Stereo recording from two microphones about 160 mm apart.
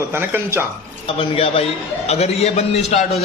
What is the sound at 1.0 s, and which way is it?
A man's voice, 35° left (ahead or behind).